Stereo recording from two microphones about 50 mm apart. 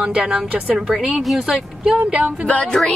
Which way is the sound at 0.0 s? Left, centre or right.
Right.